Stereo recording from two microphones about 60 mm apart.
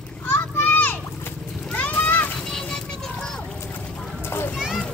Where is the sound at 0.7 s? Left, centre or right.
Left.